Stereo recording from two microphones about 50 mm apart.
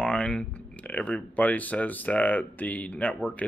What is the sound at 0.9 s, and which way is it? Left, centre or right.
Speech, left.